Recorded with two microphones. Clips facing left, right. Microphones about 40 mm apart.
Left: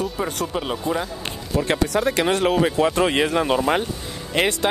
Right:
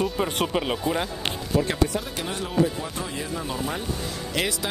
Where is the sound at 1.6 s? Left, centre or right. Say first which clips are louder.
Left 4 dB; left.